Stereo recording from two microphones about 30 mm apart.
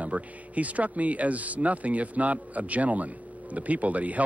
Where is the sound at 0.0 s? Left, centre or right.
Right.